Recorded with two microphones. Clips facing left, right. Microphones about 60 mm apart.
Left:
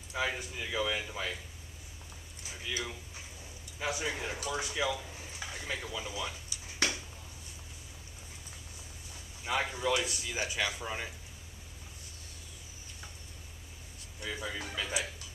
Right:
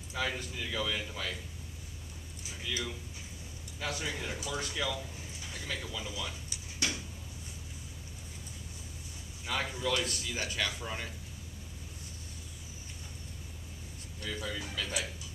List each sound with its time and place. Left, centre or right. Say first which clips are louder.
0.1 s speech: left 1 dB; centre
2.6 s speech: right 1 dB; centre
9.4 s speech: left 2 dB; centre
14.2 s speech: even; centre